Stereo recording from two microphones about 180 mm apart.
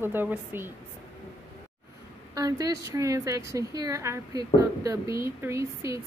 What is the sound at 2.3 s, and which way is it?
A woman's voice, 20° right (ahead or behind).